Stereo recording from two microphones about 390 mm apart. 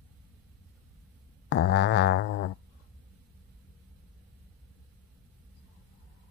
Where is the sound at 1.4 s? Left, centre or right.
Left.